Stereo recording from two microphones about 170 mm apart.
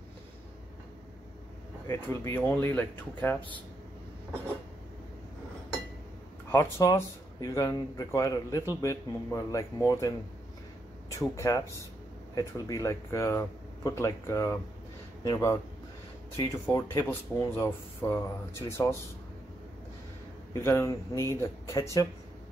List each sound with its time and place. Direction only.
1.9 s speech: 15° left (ahead or behind)
6.5 s speech: 20° left (ahead or behind)
20.6 s speech: 15° left (ahead or behind)